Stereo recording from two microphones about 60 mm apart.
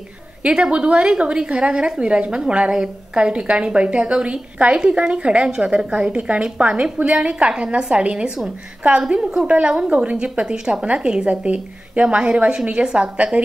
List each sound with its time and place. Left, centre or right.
0.4 s a woman's voice: centre